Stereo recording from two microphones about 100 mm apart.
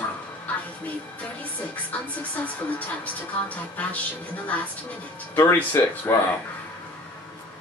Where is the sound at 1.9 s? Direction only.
15° left (ahead or behind).